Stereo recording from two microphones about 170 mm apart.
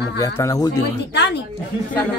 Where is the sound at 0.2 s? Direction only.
20° left (ahead or behind).